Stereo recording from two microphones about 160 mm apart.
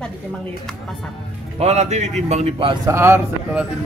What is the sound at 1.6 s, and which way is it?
A man's voice, 45° right (ahead or behind).